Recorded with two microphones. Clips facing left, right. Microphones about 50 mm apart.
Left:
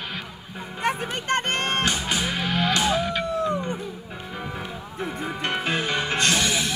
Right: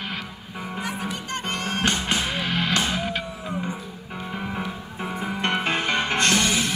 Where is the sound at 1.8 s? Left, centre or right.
Right.